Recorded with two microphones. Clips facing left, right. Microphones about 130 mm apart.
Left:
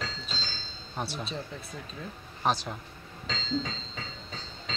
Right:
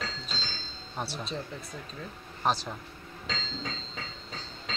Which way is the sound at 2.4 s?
Centre (ahead or behind).